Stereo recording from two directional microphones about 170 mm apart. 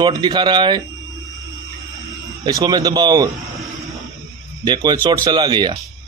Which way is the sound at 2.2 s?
20° right (ahead or behind).